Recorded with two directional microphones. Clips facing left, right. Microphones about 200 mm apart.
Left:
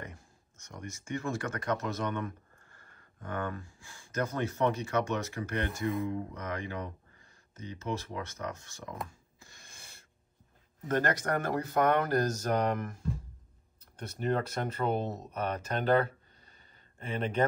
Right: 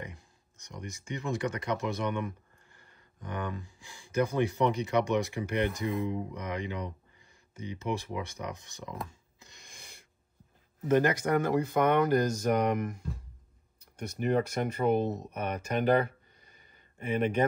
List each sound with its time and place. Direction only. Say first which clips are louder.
0.0 s speech: right 2 dB; 15° right (ahead or behind)
9.4 s a sound: right 2 dB; 20° right (ahead or behind)
10.9 s speech: right 4 dB; 10° right (ahead or behind)
13.9 s speech: right 3 dB; 10° right (ahead or behind)